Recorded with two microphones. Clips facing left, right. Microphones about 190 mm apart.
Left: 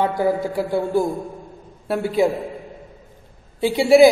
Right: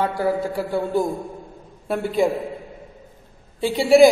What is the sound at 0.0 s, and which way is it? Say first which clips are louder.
A man's voice: left 2 dB; 15° left (ahead or behind).